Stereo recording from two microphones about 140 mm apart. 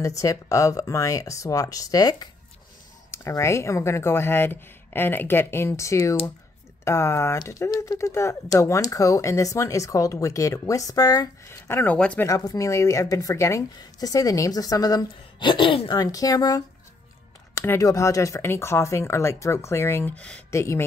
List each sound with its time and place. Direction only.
0.0 s speech: 25° left (ahead or behind)
12.3 s speech: 25° left (ahead or behind)
16.0 s speech: 25° left (ahead or behind); by 20.6 s 10° left (ahead or behind)